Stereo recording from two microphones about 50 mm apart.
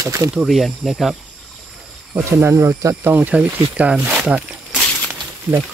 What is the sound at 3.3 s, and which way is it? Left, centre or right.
Speech, right.